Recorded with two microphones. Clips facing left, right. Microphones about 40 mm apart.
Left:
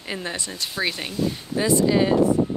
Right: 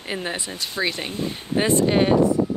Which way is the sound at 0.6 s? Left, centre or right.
Centre.